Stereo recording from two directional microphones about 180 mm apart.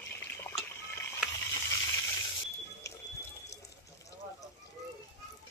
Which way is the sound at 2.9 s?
15° left (ahead or behind).